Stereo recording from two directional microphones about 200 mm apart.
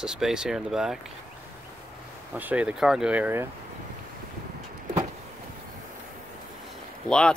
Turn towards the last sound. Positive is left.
turn(degrees=5)  # may be behind; listen again after turning